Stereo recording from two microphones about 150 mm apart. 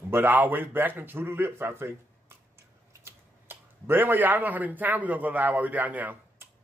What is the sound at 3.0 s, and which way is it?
A man's voice, 15° right (ahead or behind).